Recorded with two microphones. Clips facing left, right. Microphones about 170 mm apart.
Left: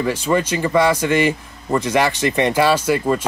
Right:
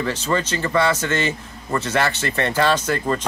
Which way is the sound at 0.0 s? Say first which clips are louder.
Left 4 dB; 10° left (ahead or behind).